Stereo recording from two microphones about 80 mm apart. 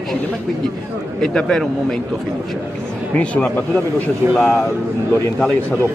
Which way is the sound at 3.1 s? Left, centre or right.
Centre.